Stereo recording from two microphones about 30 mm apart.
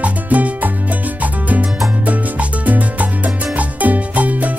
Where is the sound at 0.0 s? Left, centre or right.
Right.